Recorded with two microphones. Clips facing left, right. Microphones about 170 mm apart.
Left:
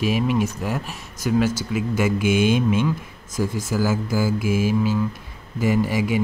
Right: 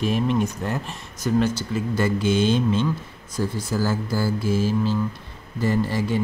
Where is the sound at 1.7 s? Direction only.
10° left (ahead or behind).